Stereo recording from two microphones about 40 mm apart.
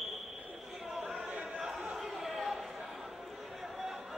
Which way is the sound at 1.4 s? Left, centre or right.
Right.